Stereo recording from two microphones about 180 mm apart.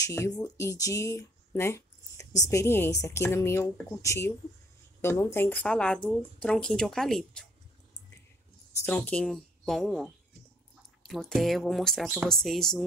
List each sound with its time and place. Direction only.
0.0 s speech: 15° left (ahead or behind); by 7.4 s centre (ahead or behind)
8.8 s speech: 10° left (ahead or behind)